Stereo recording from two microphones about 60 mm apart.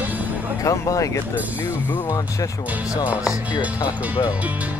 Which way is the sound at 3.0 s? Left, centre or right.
Right.